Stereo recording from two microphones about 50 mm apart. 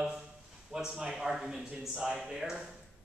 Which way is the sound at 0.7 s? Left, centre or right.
Centre.